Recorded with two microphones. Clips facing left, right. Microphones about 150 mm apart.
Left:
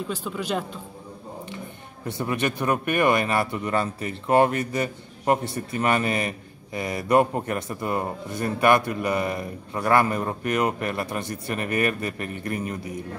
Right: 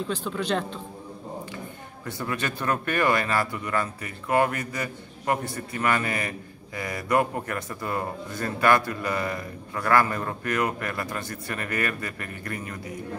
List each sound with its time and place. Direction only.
0.1 s a man's voice: 10° left (ahead or behind)
2.0 s speech: 20° left (ahead or behind)